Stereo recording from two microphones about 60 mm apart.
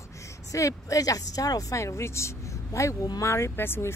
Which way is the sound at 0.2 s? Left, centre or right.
Left.